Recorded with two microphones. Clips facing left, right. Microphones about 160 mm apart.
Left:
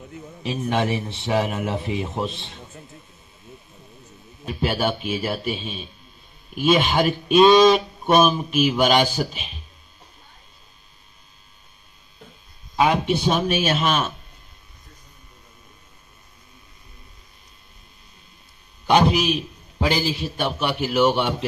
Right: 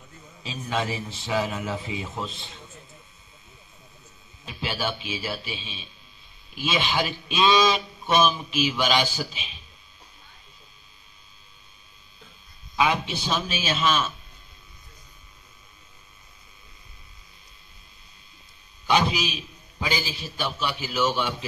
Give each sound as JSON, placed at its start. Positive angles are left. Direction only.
{"t": 0.1, "sound": "a man's voice", "side_deg": 65}
{"t": 4.5, "sound": "speech", "side_deg": 50}
{"t": 12.7, "sound": "a man's voice", "side_deg": 50}
{"t": 18.9, "sound": "a man's voice", "side_deg": 55}